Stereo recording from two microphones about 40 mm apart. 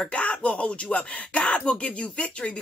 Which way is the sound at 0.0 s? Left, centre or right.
Left.